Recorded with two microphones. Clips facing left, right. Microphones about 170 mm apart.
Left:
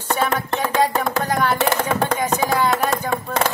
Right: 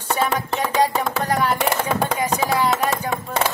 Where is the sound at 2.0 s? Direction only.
5° right (ahead or behind).